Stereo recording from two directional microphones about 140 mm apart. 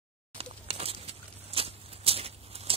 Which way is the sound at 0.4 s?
45° right (ahead or behind).